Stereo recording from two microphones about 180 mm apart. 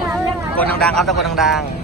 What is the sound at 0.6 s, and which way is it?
A man's voice, 5° left (ahead or behind).